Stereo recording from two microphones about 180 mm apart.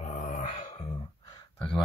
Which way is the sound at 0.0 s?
45° left (ahead or behind).